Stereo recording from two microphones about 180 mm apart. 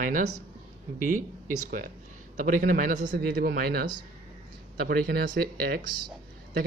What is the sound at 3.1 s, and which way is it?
Speech, 60° right (ahead or behind).